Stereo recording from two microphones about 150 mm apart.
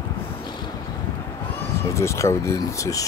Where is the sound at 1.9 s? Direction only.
20° left (ahead or behind).